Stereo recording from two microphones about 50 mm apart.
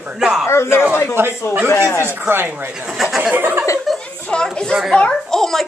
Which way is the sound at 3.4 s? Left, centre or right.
Right.